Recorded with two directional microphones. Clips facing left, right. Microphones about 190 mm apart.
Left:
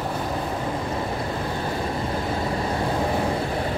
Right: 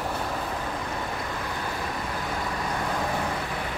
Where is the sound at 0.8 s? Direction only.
30° left (ahead or behind).